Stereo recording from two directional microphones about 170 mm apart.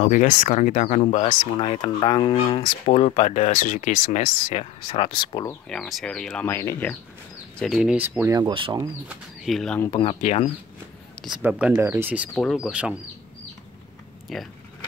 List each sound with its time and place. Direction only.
0.0 s speech: 50° left (ahead or behind)
1.3 s speech: 30° left (ahead or behind); by 4.6 s 50° left (ahead or behind)
4.8 s speech: 30° left (ahead or behind)
5.7 s speech: centre (ahead or behind)
7.5 s speech: centre (ahead or behind)
8.4 s speech: 30° right (ahead or behind)
9.1 s speech: centre (ahead or behind)
9.8 s speech: 25° left (ahead or behind)
11.1 s speech: 5° right (ahead or behind)
12.4 s speech: centre (ahead or behind)
14.3 s speech: centre (ahead or behind)